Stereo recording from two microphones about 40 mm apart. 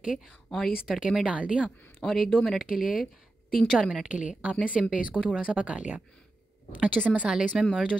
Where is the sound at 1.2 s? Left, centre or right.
Right.